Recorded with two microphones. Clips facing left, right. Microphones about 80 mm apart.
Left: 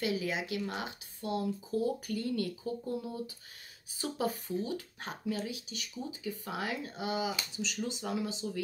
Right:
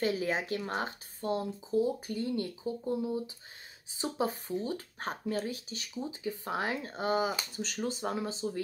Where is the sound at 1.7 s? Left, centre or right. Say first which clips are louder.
Right 4 dB; right.